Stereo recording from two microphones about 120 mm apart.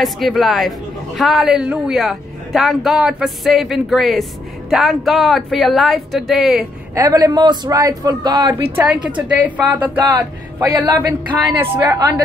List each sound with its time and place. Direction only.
0.0 s speech: centre (ahead or behind)
7.0 s a man's voice: 35° right (ahead or behind)
8.7 s a woman's voice: 10° right (ahead or behind)
10.6 s a man's voice: 30° right (ahead or behind)